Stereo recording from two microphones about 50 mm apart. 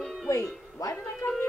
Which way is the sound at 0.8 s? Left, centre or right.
Left.